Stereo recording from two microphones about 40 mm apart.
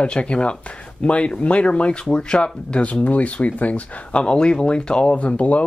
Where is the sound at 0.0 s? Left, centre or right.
Left.